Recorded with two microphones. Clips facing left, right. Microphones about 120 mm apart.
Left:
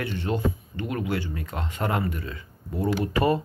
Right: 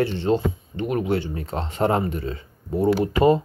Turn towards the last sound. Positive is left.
turn(degrees=-25)  # may be behind; listen again after turning